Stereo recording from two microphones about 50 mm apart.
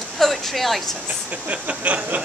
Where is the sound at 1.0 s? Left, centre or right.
Right.